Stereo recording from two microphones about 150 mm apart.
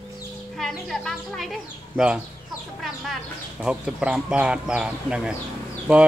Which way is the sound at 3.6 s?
5° right (ahead or behind).